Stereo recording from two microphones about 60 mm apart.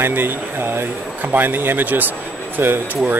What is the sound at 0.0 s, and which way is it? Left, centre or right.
Speech, right.